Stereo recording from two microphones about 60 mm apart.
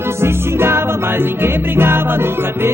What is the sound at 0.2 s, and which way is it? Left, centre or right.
Music, right.